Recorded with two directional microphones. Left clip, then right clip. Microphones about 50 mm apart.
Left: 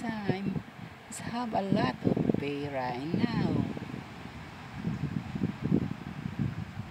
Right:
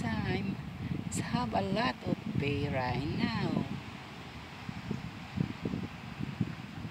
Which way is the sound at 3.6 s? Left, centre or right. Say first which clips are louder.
Left 3 dB; left.